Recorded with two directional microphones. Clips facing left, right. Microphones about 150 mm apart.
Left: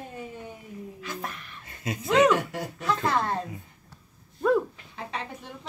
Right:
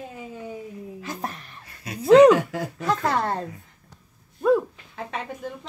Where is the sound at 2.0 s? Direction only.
35° right (ahead or behind).